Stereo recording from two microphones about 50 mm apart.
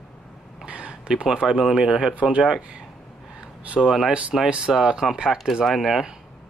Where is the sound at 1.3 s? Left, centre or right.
Centre.